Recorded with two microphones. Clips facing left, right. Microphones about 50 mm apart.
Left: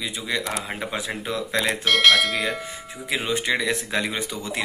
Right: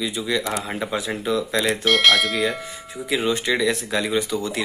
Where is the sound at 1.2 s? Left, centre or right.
Left.